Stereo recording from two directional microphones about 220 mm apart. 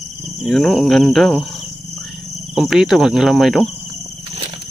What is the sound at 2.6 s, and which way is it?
Speech, centre (ahead or behind).